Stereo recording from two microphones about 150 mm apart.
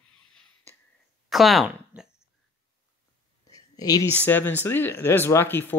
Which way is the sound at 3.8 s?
25° left (ahead or behind).